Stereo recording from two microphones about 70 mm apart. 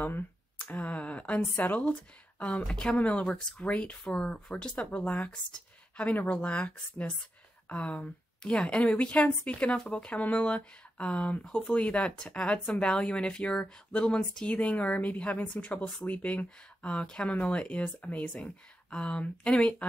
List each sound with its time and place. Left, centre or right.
0.0 s a woman's voice: left